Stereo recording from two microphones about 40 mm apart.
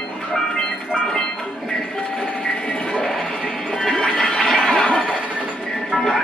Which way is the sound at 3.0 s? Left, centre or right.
Centre.